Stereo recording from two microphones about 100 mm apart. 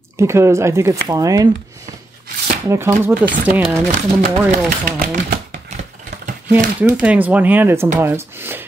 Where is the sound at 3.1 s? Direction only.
15° right (ahead or behind).